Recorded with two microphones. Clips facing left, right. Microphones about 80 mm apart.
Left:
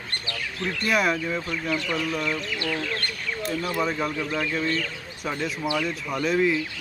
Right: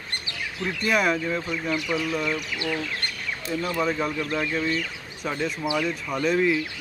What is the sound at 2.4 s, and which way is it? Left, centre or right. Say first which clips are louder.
Speech: even; centre.